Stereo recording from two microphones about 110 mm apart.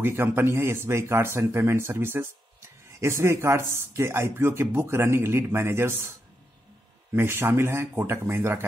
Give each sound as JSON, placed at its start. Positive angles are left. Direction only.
{"t": 0.0, "sound": "a man's voice", "side_deg": -20}
{"t": 7.2, "sound": "a man's voice", "side_deg": -20}